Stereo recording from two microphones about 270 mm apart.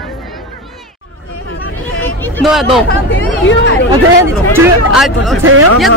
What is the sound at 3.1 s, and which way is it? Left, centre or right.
Speech, left.